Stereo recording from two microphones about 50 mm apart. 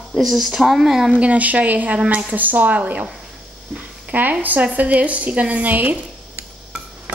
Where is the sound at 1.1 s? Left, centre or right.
Right.